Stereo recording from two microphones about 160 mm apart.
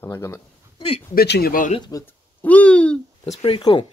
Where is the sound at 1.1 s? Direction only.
85° left.